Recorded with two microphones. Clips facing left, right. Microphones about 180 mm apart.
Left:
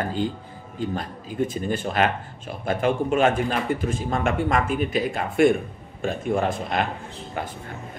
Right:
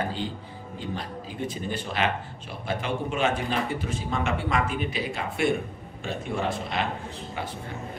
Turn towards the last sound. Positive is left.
turn(degrees=50)  # may be behind; listen again after turning